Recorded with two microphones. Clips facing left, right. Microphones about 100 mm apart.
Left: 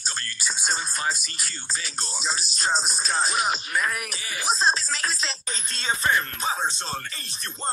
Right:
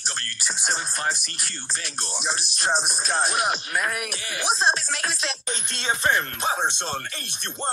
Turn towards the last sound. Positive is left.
turn(degrees=-65)  # may be behind; listen again after turning